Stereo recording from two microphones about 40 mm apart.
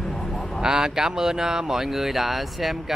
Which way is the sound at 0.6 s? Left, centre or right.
Centre.